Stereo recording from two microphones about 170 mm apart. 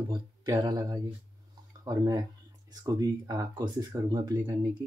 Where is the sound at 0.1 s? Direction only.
25° right (ahead or behind).